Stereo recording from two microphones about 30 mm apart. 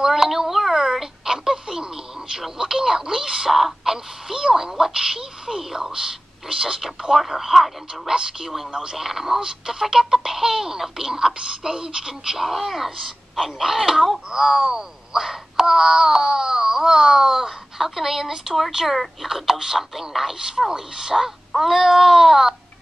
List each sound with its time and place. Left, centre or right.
0.0 s a sound: centre
2.3 s speech: centre
6.8 s speech: centre
12.4 s speech: centre
15.2 s a sound: centre
19.2 s speech: centre
20.5 s speech: centre
21.5 s speech: centre